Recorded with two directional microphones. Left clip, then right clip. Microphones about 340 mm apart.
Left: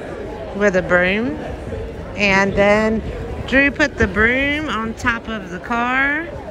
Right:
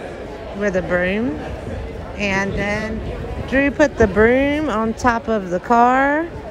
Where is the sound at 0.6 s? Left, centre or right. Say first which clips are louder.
Left 4 dB; centre.